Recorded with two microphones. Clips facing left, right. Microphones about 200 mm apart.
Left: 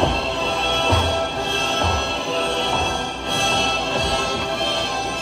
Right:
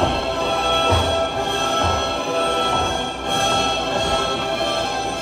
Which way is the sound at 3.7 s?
15° right (ahead or behind).